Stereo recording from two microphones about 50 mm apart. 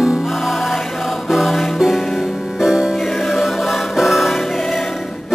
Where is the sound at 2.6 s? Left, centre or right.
Centre.